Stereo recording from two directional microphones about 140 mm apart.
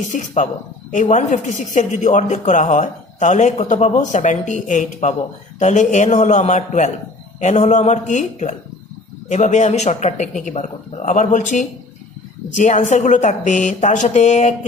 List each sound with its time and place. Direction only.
0.1 s speech: 60° left (ahead or behind)